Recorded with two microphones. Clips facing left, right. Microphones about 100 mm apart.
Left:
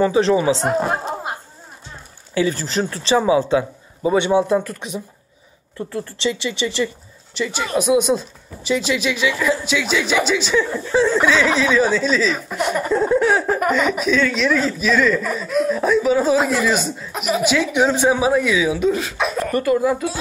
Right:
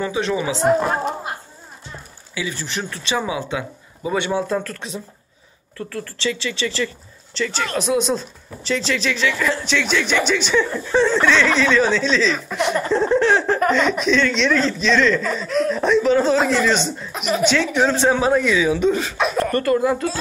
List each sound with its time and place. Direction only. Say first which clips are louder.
0.0 s speech: left 6 dB; 35° left (ahead or behind)
2.3 s speech: left 7 dB; 40° left (ahead or behind); by 20.1 s 5° left (ahead or behind)